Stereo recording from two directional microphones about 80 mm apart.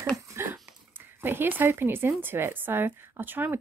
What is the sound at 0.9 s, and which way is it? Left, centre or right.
Speech, right.